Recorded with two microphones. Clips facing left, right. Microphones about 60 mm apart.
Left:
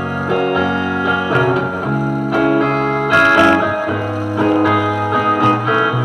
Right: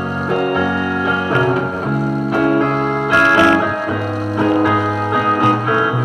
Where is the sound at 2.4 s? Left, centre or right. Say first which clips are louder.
Left 1 dB; left.